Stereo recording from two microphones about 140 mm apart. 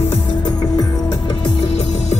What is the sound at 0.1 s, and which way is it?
Music, 40° left (ahead or behind).